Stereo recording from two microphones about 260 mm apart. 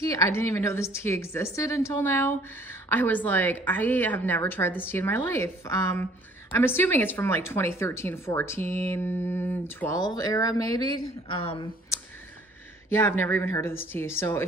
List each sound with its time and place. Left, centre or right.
0.0 s a woman's voice: centre
12.9 s a woman's voice: centre